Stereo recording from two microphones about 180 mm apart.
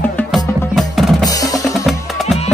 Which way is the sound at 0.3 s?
Centre (ahead or behind).